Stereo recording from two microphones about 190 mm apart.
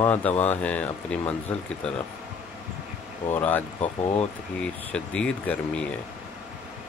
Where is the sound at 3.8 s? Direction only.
35° left (ahead or behind).